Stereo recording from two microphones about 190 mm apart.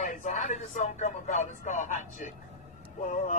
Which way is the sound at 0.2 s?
40° left (ahead or behind).